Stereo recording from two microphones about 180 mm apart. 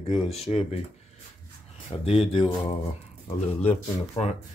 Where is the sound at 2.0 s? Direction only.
35° left (ahead or behind).